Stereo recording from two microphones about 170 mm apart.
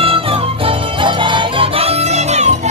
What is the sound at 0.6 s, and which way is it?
Music, 30° right (ahead or behind).